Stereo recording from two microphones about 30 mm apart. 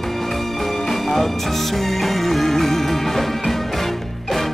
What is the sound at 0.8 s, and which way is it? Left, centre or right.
Music, centre.